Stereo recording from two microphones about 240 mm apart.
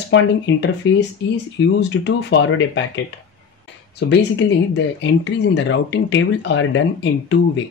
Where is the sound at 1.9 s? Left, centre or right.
Left.